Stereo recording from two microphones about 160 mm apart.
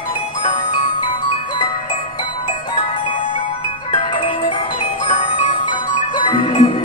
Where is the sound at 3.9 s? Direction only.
35° left (ahead or behind).